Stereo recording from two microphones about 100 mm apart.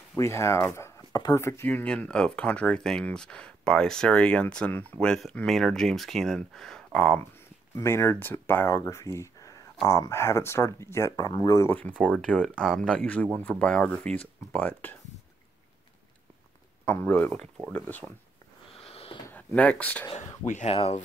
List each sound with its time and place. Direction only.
0.2 s speech: 30° left (ahead or behind)
1.7 s speech: 15° left (ahead or behind)
7.7 s speech: 25° left (ahead or behind)
8.7 s speech: 30° left (ahead or behind)
11.6 s speech: 15° left (ahead or behind)
16.8 s speech: 20° left (ahead or behind)
18.8 s sniff: 80° left
19.3 s speech: 15° left (ahead or behind)
20.6 s speech: 75° left (ahead or behind)